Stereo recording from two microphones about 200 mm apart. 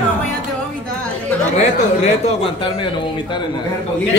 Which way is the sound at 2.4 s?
25° left (ahead or behind).